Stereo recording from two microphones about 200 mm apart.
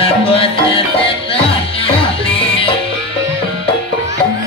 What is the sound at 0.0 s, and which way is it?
Music, 30° left (ahead or behind).